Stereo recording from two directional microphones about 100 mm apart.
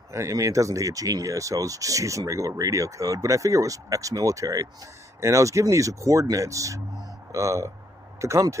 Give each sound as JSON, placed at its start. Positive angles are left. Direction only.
{"t": 0.1, "sound": "speech", "side_deg": -30}